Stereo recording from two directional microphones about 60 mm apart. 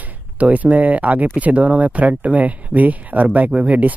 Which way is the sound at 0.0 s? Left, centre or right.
Right.